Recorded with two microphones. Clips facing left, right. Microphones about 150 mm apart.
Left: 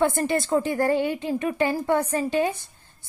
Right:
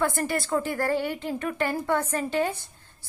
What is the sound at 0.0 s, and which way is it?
A woman's voice, 20° left (ahead or behind).